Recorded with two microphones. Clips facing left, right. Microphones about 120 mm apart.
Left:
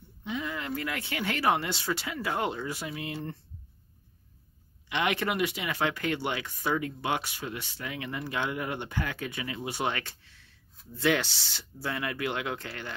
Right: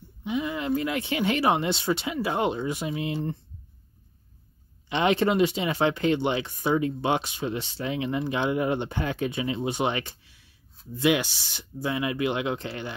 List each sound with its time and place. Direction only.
0.2 s speech: 15° right (ahead or behind)
4.8 s speech: 30° right (ahead or behind)